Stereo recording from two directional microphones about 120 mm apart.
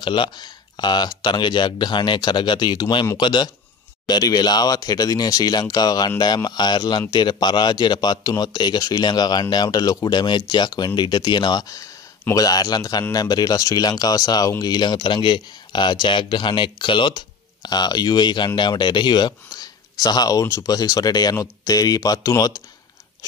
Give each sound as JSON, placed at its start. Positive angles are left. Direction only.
{"t": 0.0, "sound": "speech", "side_deg": 40}